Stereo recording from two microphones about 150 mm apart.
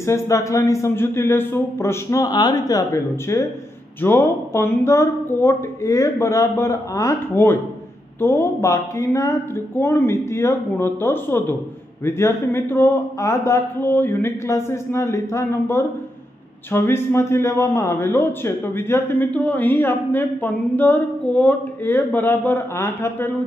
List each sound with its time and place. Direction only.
0.0 s a man's voice: 20° left (ahead or behind)